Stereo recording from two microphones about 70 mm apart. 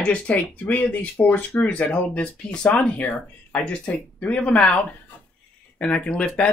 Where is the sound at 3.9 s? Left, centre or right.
Centre.